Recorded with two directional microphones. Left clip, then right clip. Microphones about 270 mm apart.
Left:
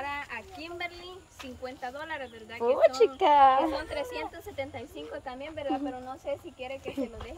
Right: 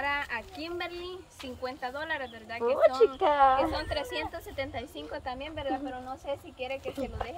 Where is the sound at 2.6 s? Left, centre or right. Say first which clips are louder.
Left 1 dB; left.